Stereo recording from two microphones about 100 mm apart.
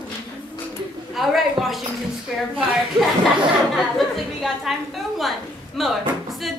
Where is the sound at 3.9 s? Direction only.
Centre (ahead or behind).